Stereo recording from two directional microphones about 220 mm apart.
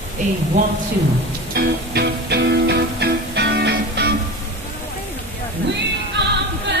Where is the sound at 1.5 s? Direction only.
45° right (ahead or behind).